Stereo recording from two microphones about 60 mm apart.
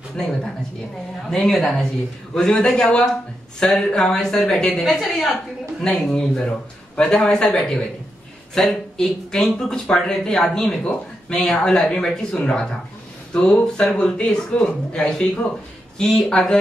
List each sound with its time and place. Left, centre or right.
1.3 s a woman's voice: centre
6.1 s speech: centre
10.8 s speech: centre
11.3 s a woman's voice: centre